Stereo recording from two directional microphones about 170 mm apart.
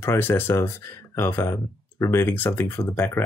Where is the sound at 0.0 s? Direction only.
15° left (ahead or behind).